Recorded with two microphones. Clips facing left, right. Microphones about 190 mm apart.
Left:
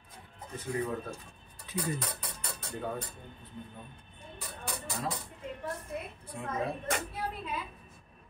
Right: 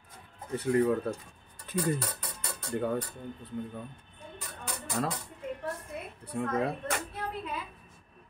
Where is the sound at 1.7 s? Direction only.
55° right (ahead or behind).